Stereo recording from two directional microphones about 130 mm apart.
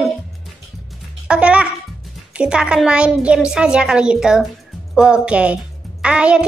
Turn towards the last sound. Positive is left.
turn(degrees=-10)  # may be behind; listen again after turning